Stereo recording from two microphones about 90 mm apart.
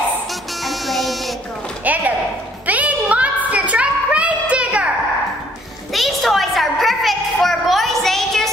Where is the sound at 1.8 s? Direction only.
20° right (ahead or behind).